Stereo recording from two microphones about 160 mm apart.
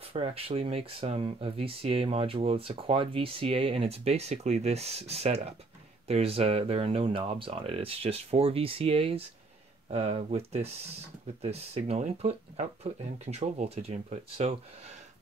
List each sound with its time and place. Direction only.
0.1 s speech: 35° right (ahead or behind)